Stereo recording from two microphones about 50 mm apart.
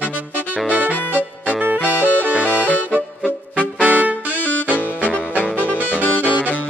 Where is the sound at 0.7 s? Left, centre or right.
Right.